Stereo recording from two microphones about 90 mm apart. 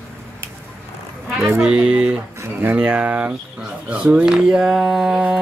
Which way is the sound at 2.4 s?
25° right (ahead or behind).